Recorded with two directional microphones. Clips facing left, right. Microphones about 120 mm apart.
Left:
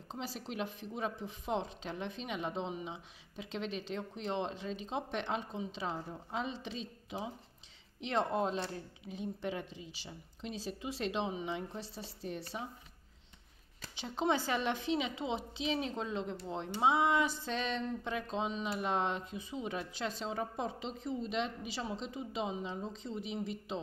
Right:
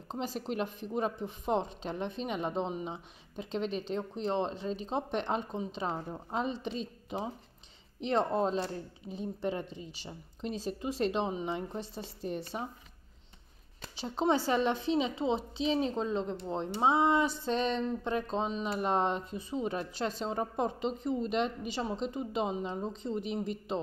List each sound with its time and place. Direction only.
0.1 s a woman's voice: 45° right (ahead or behind)
13.9 s a woman's voice: 35° right (ahead or behind)